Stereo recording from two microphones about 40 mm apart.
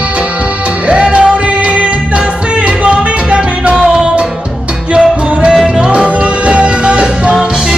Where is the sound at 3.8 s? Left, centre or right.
Centre.